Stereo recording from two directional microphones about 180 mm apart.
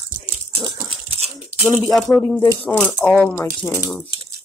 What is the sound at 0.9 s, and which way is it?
Dog, 35° right (ahead or behind).